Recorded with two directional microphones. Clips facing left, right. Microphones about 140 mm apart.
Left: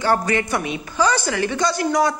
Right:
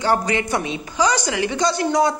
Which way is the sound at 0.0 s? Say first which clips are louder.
Even; 20° right (ahead or behind).